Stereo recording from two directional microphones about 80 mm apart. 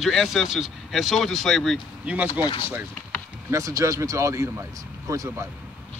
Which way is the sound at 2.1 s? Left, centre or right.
Centre.